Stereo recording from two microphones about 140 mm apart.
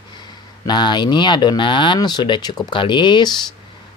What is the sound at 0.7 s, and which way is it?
Speech, 35° left (ahead or behind).